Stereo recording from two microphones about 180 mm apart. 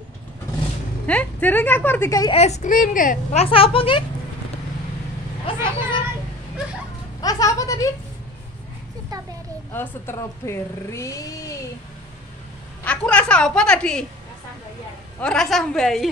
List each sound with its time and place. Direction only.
1.0 s speech: 10° left (ahead or behind)
2.3 s a woman's voice: 35° left (ahead or behind)
3.4 s speech: 30° left (ahead or behind)
5.6 s a child's voice: 25° left (ahead or behind)
7.2 s speech: 20° left (ahead or behind)
9.1 s a sound: 20° right (ahead or behind)
9.7 s speech: 15° left (ahead or behind)
12.8 s a woman's voice: 5° left (ahead or behind)
15.1 s a woman's voice: 5° left (ahead or behind)